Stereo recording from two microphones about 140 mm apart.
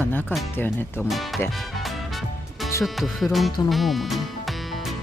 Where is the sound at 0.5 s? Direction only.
15° left (ahead or behind).